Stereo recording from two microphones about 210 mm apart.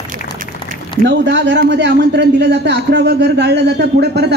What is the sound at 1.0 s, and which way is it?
A man's voice, 55° right (ahead or behind).